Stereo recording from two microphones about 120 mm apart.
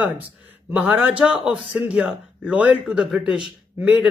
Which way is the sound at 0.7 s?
10° right (ahead or behind).